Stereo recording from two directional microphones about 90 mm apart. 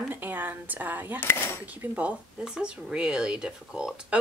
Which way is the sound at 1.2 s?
25° left (ahead or behind).